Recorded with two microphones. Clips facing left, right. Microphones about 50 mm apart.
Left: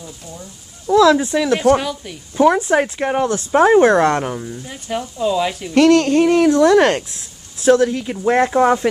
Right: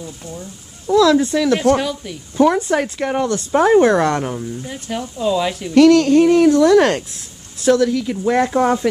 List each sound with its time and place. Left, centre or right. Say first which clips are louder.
0.8 s speech: left 1 dB; left
1.1 s speech: right 1 dB; centre
2.5 s speech: left 2 dB; left
4.6 s speech: left 1 dB; centre
5.8 s speech: right 2 dB; left
8.5 s speech: left 2 dB; centre